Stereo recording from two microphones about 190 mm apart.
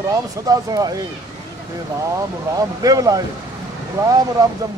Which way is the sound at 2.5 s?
20° right (ahead or behind).